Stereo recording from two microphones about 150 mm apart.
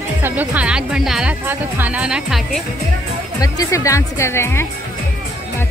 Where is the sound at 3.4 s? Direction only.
20° left (ahead or behind).